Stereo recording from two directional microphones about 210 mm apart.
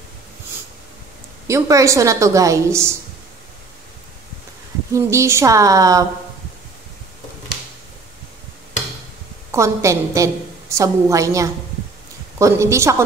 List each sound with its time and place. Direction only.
1.5 s a woman's voice: 15° right (ahead or behind)
4.9 s a woman's voice: 15° right (ahead or behind)
9.5 s a woman's voice: 15° right (ahead or behind)